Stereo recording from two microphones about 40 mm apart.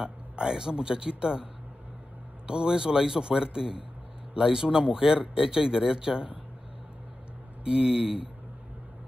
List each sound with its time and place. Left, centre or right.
0.0 s speech: centre
7.6 s speech: right